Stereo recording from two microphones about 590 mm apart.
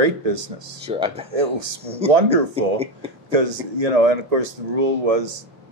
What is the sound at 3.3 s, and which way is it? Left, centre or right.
Speech, right.